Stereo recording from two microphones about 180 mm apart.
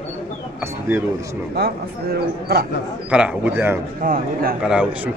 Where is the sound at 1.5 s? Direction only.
60° right (ahead or behind).